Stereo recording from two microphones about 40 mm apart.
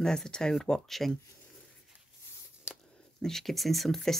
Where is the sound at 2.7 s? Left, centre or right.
Right.